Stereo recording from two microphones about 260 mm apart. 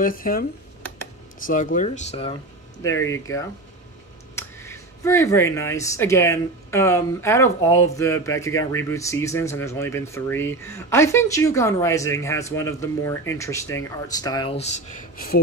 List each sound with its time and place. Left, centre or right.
0.0 s speech: left
2.8 s speech: centre; by 15.4 s left